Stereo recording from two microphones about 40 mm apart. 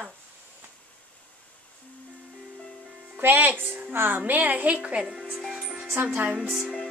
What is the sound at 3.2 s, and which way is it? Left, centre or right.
A woman's voice, right.